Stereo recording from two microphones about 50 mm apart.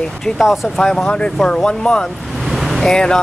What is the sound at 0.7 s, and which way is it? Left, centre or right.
Speech, centre.